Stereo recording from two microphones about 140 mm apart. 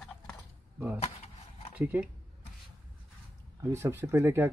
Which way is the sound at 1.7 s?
10° right (ahead or behind).